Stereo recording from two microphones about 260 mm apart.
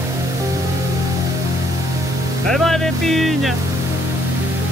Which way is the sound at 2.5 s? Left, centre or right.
Centre.